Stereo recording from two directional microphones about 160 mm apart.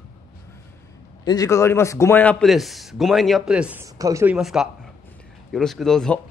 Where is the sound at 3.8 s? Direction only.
20° right (ahead or behind).